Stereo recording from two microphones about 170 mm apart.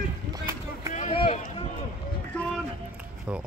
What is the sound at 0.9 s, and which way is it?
Run, 45° left (ahead or behind).